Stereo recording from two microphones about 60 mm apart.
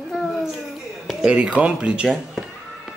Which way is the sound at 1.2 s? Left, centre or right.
Centre.